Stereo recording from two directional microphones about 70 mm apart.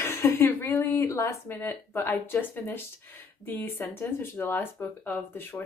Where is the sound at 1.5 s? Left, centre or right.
Left.